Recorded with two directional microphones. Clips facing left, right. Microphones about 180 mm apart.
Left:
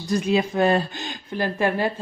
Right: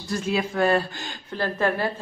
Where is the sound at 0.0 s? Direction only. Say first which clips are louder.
Left 4 dB; 20° left (ahead or behind).